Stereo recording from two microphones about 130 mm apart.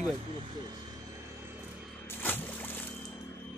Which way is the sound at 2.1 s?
15° left (ahead or behind).